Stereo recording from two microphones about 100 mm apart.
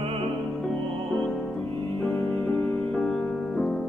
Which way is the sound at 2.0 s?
10° left (ahead or behind).